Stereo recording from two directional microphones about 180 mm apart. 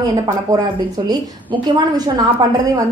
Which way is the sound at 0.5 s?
20° right (ahead or behind).